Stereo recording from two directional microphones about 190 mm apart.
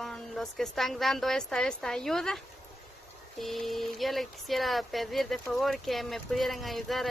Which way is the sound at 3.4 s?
Centre (ahead or behind).